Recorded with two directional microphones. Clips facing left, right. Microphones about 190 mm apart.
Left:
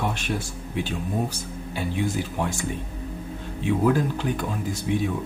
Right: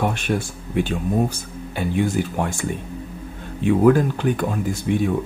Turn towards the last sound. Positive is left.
turn(degrees=-55)  # may be behind; listen again after turning